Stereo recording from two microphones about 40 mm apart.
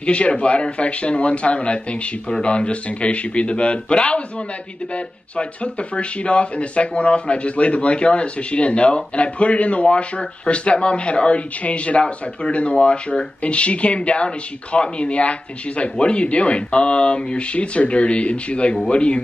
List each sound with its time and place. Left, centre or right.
0.0 s speech: left